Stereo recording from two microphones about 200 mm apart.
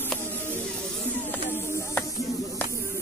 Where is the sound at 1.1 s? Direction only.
10° left (ahead or behind).